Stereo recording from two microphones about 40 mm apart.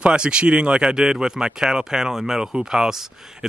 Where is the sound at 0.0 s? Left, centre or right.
Right.